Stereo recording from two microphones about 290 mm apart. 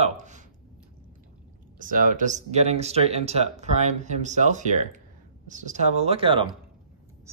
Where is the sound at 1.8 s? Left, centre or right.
Right.